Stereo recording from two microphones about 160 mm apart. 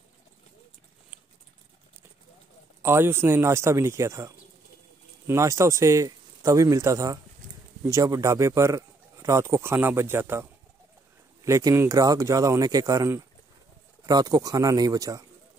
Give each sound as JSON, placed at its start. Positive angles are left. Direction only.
{"t": 2.8, "sound": "a man's voice", "side_deg": -15}
{"t": 11.4, "sound": "speech", "side_deg": -20}